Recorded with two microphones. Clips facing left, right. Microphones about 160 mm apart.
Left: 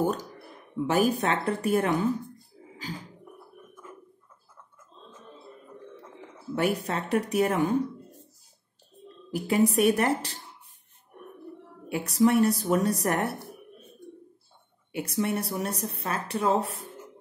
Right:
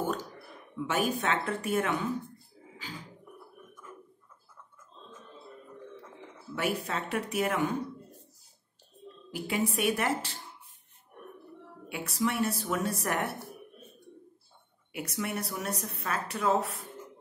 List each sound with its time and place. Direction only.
0.7 s speech: 35° left (ahead or behind)
6.5 s speech: 35° left (ahead or behind)
9.3 s speech: 40° left (ahead or behind)
11.9 s speech: 40° left (ahead or behind)
14.9 s speech: 30° left (ahead or behind)